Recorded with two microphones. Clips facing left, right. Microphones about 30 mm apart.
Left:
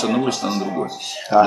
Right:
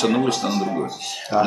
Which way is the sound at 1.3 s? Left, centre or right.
Left.